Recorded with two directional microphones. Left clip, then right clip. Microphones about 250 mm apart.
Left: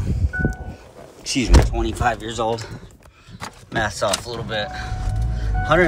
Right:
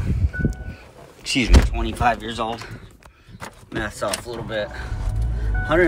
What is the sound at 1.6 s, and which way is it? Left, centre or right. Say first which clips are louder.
Speech: right 1 dB; centre.